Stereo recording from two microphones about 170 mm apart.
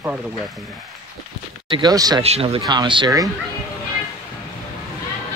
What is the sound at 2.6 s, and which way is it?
Speech, 25° right (ahead or behind).